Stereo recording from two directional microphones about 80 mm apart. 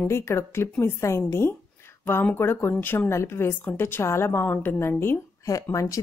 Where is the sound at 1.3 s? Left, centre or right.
Left.